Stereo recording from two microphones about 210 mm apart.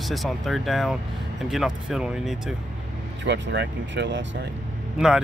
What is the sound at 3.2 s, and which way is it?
Speech, 55° right (ahead or behind).